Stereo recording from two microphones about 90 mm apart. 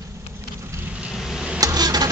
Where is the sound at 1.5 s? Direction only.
45° right (ahead or behind).